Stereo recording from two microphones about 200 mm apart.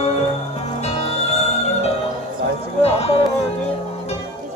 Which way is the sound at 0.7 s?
35° left (ahead or behind).